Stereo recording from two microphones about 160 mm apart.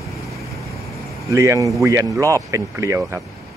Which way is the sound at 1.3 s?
20° right (ahead or behind).